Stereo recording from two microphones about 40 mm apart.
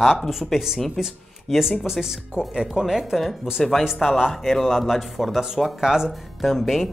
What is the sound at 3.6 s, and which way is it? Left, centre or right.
Speech, centre.